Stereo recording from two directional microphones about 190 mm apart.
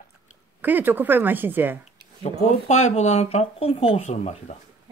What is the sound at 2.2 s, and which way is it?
Speech, 35° left (ahead or behind).